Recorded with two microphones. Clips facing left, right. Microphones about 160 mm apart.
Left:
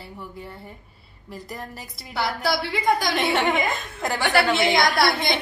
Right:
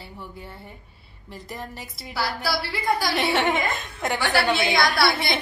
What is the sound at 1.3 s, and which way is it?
Speech, centre (ahead or behind).